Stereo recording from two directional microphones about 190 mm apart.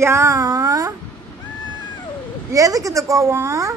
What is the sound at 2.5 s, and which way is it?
A woman's voice, 15° right (ahead or behind).